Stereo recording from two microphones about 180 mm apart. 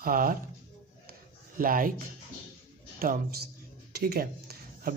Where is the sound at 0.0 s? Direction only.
50° right (ahead or behind).